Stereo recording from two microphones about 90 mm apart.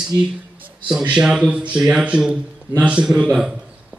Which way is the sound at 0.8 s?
10° right (ahead or behind).